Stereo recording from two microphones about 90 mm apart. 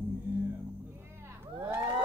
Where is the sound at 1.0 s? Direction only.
30° right (ahead or behind).